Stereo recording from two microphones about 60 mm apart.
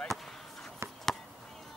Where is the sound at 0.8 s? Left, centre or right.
Right.